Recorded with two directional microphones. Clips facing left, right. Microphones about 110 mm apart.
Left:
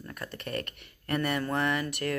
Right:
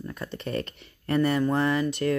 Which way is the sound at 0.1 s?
30° right (ahead or behind).